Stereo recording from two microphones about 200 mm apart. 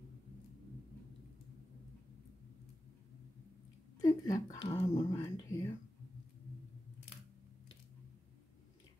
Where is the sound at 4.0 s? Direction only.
15° left (ahead or behind).